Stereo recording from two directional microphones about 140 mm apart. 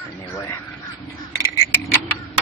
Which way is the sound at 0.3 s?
20° left (ahead or behind).